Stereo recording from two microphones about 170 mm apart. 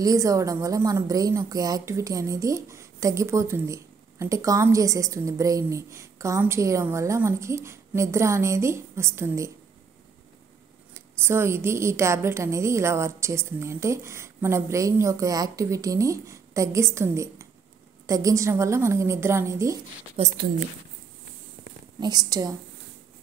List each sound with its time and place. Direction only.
0.0 s a woman's voice: 20° right (ahead or behind)
10.9 s a woman's voice: 15° right (ahead or behind)
20.2 s speech: 35° right (ahead or behind)
22.0 s a woman's voice: 20° right (ahead or behind)